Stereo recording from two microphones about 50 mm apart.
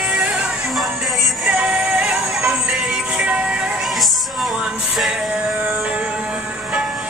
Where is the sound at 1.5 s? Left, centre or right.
Right.